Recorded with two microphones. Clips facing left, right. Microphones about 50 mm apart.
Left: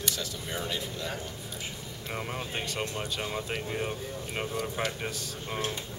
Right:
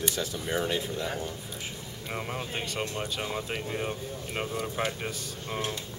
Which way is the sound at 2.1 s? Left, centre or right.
Centre.